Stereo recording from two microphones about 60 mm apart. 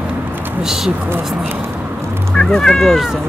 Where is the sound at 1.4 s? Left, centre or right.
Right.